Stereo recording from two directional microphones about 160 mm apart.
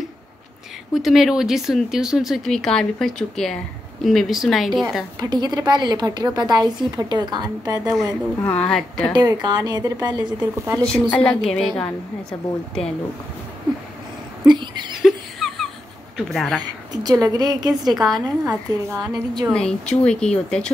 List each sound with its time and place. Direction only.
0.9 s speech: centre (ahead or behind)
5.2 s a woman's voice: 25° right (ahead or behind)
8.6 s speech: 5° left (ahead or behind)
9.1 s a woman's voice: 25° right (ahead or behind)
10.9 s speech: 10° left (ahead or behind)
14.4 s a sound: 30° right (ahead or behind)
15.0 s a sound: centre (ahead or behind)
16.2 s a woman's voice: centre (ahead or behind)
16.9 s a woman's voice: 25° right (ahead or behind)
17.9 s speech: centre (ahead or behind)
18.5 s a woman's voice: 20° right (ahead or behind)
19.5 s speech: 5° left (ahead or behind)